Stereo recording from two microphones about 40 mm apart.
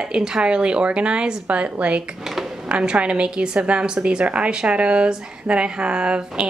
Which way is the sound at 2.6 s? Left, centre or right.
Right.